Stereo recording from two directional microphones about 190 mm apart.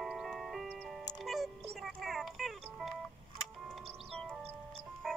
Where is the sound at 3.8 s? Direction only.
30° right (ahead or behind).